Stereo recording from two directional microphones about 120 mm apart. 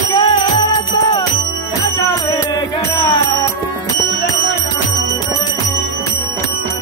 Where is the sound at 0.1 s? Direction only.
40° left (ahead or behind).